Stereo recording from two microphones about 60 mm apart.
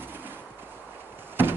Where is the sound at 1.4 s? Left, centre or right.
Right.